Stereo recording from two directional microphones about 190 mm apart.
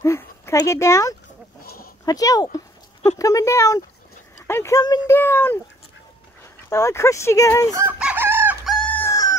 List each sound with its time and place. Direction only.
0.0 s speech: 15° left (ahead or behind)
1.6 s a sound: 50° left (ahead or behind)
2.0 s speech: 20° left (ahead or behind)
6.7 s speech: 15° left (ahead or behind)
7.7 s chicken: 10° right (ahead or behind)
8.6 s chicken: 5° left (ahead or behind)